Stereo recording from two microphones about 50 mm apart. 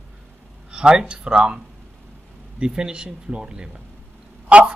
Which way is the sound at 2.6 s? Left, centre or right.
Centre.